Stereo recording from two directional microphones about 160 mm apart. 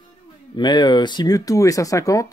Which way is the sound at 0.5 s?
25° left (ahead or behind).